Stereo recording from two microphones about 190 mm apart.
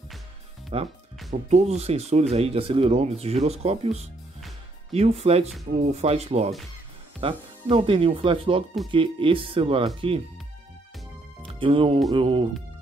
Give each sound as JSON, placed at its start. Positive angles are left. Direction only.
{"t": 0.7, "sound": "speech", "side_deg": -30}
{"t": 11.6, "sound": "speech", "side_deg": -30}